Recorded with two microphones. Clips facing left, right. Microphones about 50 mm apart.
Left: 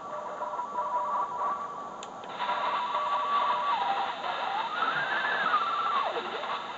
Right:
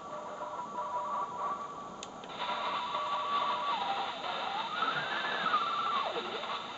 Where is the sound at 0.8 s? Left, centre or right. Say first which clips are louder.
Left 6 dB; left.